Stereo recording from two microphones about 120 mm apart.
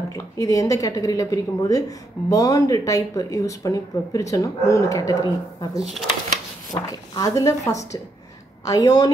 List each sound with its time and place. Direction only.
0.1 s a woman's voice: 30° left (ahead or behind)
5.8 s speech: centre (ahead or behind)
6.7 s a woman's voice: 30° left (ahead or behind)